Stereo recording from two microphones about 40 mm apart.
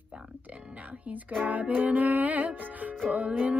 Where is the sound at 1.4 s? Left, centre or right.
Right.